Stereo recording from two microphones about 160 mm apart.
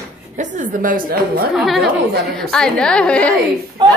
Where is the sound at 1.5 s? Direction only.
Centre (ahead or behind).